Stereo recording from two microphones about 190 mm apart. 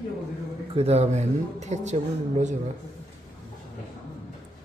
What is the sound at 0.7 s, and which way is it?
Speech, 35° right (ahead or behind).